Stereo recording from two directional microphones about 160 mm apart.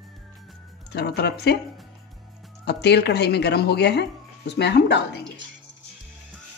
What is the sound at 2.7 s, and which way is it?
Speech, 90° left.